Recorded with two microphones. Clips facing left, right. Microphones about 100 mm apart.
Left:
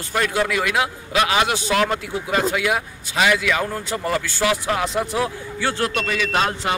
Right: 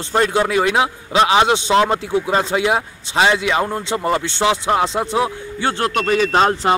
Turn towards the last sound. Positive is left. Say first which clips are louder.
# right 6 dB
turn(degrees=-35)  # may be behind; listen again after turning